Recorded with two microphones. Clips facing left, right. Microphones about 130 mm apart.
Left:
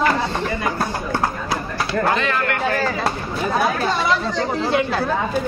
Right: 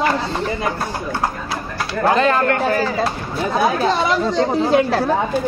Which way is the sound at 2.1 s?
35° right (ahead or behind).